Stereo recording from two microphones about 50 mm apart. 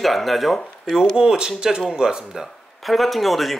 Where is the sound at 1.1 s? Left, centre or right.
Centre.